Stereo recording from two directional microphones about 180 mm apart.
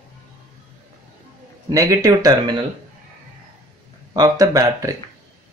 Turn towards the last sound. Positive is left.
turn(degrees=-20)  # may be behind; listen again after turning